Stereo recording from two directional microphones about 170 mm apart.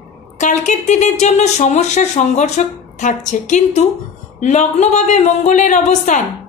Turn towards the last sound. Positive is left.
turn(degrees=45)  # may be behind; listen again after turning